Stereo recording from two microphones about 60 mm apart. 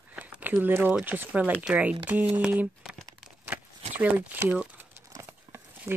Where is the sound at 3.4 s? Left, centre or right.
Right.